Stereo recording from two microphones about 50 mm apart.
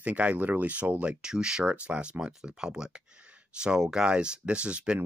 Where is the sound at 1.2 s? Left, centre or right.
Centre.